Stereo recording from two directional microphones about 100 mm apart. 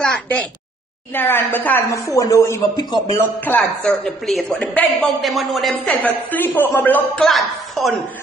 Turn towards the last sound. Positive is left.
turn(degrees=0)  # may be behind; listen again after turning